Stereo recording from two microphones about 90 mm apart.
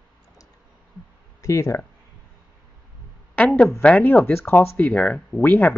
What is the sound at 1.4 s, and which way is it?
Speech, 35° left (ahead or behind).